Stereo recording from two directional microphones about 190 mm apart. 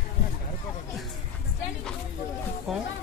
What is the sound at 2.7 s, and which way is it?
Speech, centre (ahead or behind).